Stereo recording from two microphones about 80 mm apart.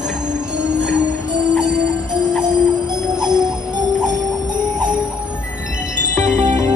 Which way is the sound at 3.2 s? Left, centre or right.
Right.